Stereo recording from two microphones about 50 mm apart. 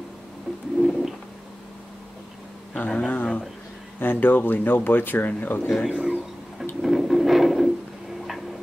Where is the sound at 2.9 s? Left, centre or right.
Centre.